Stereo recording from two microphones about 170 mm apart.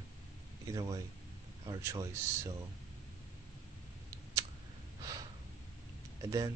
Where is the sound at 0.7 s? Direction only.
20° right (ahead or behind).